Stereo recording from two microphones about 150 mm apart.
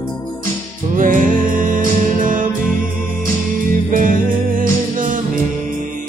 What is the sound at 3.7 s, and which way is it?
Music, 65° right (ahead or behind).